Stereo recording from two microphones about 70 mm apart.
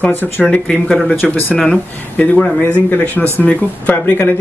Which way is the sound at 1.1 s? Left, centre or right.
Left.